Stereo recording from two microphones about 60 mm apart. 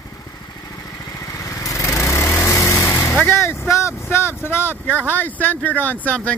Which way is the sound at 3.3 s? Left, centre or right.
Left.